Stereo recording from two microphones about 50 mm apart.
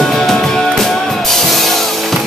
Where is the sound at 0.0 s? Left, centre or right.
Centre.